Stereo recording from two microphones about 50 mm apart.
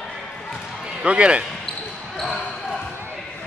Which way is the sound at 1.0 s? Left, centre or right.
Right.